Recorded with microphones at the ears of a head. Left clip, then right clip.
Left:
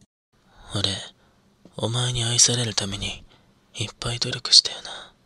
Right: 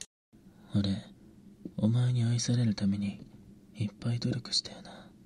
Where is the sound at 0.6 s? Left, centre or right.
Left.